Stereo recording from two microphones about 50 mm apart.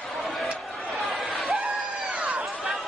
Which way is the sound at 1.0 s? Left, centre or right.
Centre.